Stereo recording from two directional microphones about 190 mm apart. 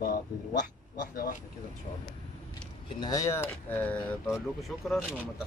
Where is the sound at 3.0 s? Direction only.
15° left (ahead or behind); by 5.0 s centre (ahead or behind).